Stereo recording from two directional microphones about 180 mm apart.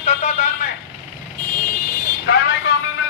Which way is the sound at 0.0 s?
40° left (ahead or behind).